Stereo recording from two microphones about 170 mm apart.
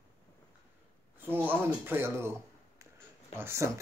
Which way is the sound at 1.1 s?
10° right (ahead or behind).